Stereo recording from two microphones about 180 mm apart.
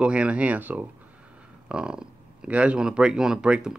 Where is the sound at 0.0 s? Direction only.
5° right (ahead or behind).